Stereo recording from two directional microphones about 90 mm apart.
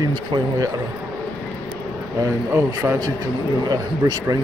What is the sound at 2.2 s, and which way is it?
Speech, 35° right (ahead or behind).